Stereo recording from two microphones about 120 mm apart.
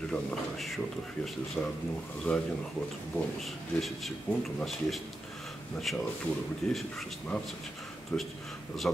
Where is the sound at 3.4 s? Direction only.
Centre (ahead or behind).